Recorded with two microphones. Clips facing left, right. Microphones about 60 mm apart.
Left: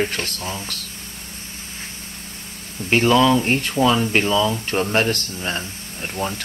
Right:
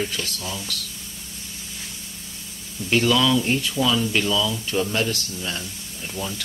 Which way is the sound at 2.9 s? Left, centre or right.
Left.